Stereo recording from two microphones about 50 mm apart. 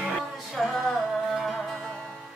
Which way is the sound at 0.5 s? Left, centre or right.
Centre.